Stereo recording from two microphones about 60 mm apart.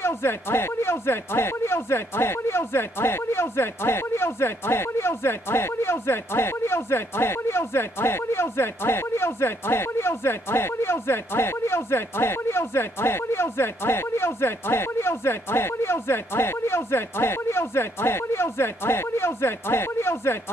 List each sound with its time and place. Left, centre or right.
0.0 s speech: left